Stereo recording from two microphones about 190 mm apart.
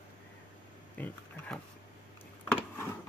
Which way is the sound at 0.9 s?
10° left (ahead or behind).